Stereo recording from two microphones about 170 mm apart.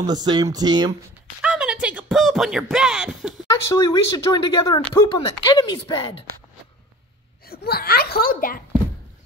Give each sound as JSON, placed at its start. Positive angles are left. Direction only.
{"t": 0.0, "sound": "speech", "side_deg": -25}
{"t": 1.4, "sound": "speech", "side_deg": -5}
{"t": 3.7, "sound": "speech", "side_deg": 25}
{"t": 7.6, "sound": "a child's voice", "side_deg": 65}